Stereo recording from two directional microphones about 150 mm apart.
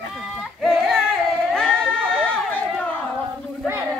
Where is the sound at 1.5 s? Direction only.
5° left (ahead or behind).